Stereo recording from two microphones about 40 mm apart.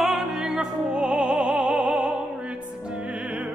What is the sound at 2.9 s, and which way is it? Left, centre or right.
Music, right.